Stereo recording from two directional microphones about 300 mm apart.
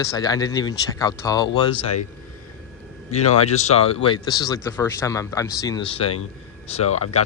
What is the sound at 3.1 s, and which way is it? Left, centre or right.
Speech, left.